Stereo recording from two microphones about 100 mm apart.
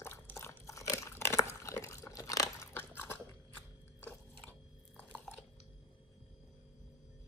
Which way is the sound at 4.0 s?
20° left (ahead or behind).